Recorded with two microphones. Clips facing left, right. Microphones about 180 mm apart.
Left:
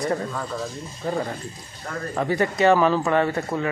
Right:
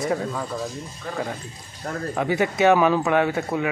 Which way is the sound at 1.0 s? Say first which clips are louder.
Left 7 dB; 30° left (ahead or behind).